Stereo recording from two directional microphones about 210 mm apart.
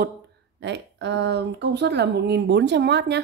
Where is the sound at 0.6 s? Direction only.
55° right (ahead or behind).